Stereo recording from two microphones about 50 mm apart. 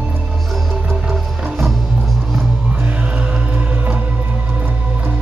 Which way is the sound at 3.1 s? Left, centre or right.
Right.